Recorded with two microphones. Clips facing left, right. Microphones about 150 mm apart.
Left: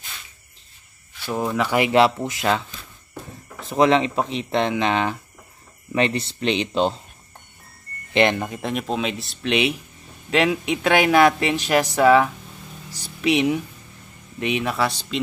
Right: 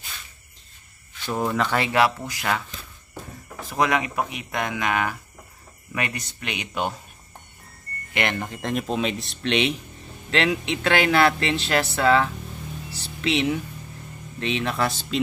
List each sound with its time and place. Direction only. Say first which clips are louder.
1.2 s speech: left 1 dB; 5° left (ahead or behind)
1.9 s speech: left 4 dB; 25° left (ahead or behind)
3.6 s speech: left 6 dB; 25° left (ahead or behind)
8.1 s speech: left 7 dB; 20° left (ahead or behind)
8.5 s speech: left 1 dB; centre (ahead or behind)
12.9 s a sound: left 4 dB; 15° left (ahead or behind)
14.4 s speech: left 2 dB; 10° left (ahead or behind)